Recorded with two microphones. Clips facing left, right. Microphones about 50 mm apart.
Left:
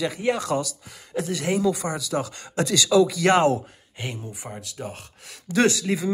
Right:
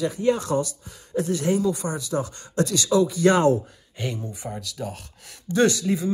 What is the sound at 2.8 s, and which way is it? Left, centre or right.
Speech, left.